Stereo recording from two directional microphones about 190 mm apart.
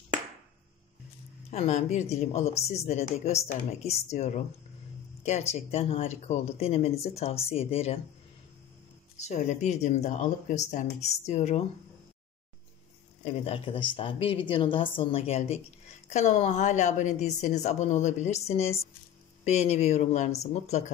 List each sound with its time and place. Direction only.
1.5 s a woman's voice: 35° left (ahead or behind)
5.5 s a woman's voice: 35° left (ahead or behind)
9.2 s a woman's voice: 35° left (ahead or behind)
13.2 s a woman's voice: 35° left (ahead or behind)